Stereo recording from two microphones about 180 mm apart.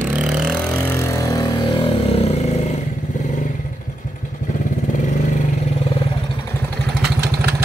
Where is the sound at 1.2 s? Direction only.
20° left (ahead or behind).